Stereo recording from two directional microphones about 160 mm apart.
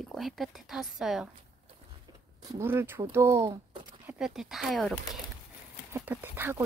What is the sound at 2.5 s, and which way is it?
Speech, 15° right (ahead or behind).